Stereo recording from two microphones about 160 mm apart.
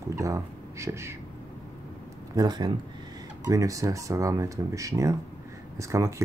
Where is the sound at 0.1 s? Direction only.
20° right (ahead or behind).